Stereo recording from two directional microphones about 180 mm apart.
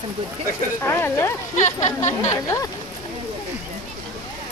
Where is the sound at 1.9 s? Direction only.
40° left (ahead or behind).